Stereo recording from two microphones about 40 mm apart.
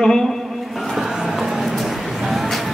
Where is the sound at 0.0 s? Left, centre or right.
Centre.